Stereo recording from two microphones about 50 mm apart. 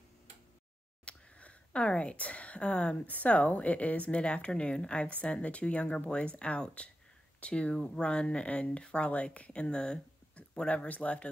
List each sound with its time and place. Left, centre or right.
1.0 s a sound: left
3.1 s speech: left
10.7 s speech: left